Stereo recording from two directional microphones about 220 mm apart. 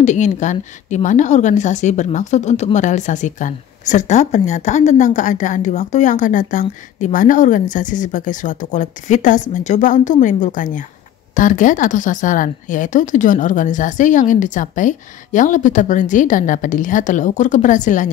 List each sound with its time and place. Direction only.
0.0 s a woman's voice: 35° left (ahead or behind)